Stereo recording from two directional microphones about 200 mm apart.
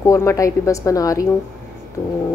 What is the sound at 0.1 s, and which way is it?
A woman's voice, 15° left (ahead or behind).